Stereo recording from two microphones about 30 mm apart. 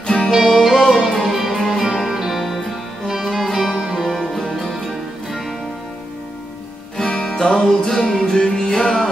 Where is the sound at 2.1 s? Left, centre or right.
Centre.